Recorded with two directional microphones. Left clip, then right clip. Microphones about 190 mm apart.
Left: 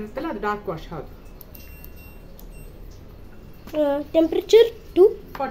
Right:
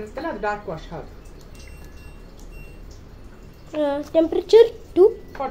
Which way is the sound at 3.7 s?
15° left (ahead or behind).